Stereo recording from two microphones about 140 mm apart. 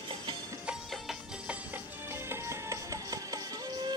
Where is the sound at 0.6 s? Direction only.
5° right (ahead or behind).